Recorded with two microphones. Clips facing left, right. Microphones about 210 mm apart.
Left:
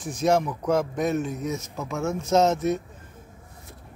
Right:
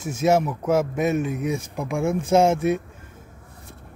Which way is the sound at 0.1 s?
5° right (ahead or behind).